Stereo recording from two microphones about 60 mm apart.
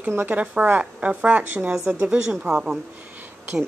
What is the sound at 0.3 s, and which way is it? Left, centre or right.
Speech, right.